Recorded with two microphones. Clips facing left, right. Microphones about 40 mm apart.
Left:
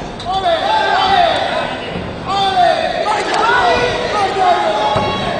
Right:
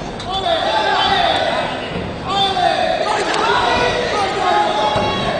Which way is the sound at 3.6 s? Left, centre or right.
Left.